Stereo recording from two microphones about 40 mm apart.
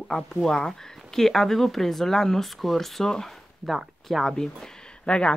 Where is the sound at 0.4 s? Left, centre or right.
Centre.